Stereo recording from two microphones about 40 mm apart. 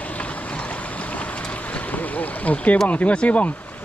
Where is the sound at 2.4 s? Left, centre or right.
Left.